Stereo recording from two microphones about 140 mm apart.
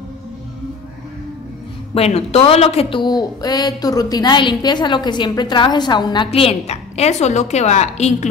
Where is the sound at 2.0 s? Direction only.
45° left (ahead or behind).